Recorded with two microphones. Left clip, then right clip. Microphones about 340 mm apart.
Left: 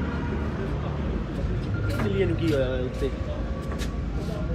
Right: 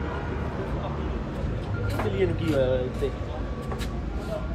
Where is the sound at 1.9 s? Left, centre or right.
Right.